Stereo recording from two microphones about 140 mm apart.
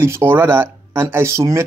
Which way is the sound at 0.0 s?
15° right (ahead or behind).